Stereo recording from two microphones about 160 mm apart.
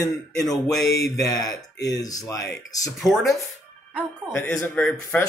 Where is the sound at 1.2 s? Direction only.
20° left (ahead or behind).